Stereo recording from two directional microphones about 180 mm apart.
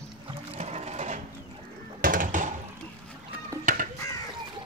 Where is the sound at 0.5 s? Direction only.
35° right (ahead or behind).